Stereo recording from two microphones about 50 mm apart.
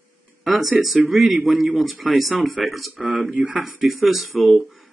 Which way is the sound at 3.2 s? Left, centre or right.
Right.